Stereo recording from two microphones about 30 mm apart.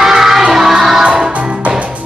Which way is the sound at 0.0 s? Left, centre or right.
Centre.